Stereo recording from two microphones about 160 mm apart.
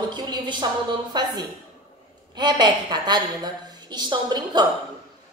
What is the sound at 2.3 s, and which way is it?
A woman's voice, 25° right (ahead or behind).